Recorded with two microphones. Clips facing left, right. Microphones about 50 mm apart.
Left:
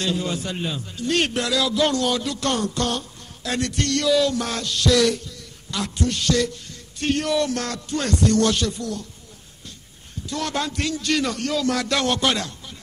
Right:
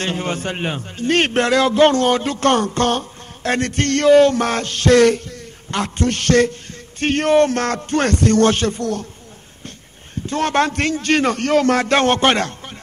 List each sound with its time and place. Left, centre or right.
0.0 s a man's voice: right
10.2 s a man's voice: right